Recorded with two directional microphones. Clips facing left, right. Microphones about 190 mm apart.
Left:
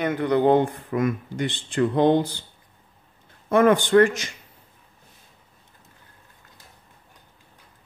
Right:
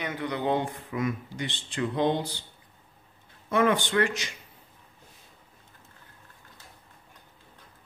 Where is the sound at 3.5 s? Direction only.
50° left (ahead or behind).